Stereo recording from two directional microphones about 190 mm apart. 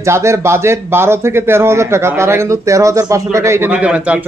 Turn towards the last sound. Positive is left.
turn(degrees=-5)  # may be behind; listen again after turning